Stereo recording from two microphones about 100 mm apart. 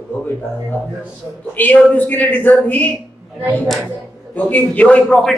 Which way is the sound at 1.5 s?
20° left (ahead or behind).